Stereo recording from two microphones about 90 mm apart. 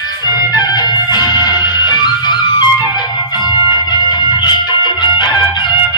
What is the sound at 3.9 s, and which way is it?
Music, 50° left (ahead or behind).